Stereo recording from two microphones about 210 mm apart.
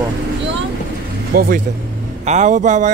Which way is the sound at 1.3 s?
45° right (ahead or behind).